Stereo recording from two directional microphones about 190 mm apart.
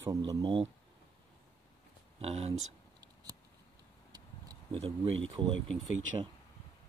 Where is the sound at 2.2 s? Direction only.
35° right (ahead or behind).